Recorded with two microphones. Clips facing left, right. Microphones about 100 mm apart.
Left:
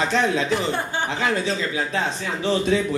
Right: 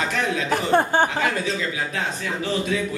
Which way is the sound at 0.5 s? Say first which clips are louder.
Right 4 dB; 50° right (ahead or behind).